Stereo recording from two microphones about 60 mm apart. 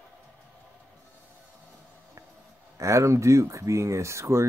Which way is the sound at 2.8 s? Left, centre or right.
Right.